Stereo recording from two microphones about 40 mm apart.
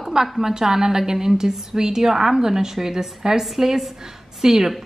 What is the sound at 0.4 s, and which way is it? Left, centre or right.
A woman's voice, centre.